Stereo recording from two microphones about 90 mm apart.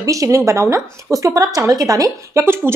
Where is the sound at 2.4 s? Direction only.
25° right (ahead or behind).